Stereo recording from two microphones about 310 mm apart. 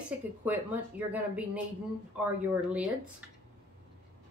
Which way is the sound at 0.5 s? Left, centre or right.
Centre.